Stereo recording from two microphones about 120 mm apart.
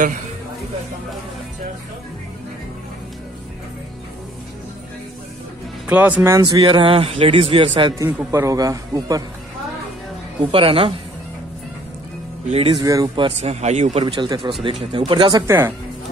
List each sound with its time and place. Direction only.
5.9 s speech: 15° right (ahead or behind)
6.4 s speech: 45° right (ahead or behind)
8.3 s a man's voice: 25° right (ahead or behind)
10.4 s speech: 50° right (ahead or behind)
12.4 s speech: 55° right (ahead or behind)
12.7 s speech: 30° right (ahead or behind)
13.4 s speech: 70° right (ahead or behind)
14.0 s speech: 40° right (ahead or behind)
15.4 s a man's voice: 20° right (ahead or behind)